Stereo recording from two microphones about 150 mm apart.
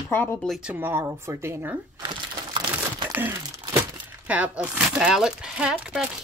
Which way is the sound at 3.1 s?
15° right (ahead or behind).